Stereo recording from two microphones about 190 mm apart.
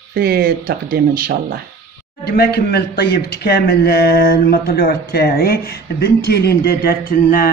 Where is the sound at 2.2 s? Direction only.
55° left (ahead or behind).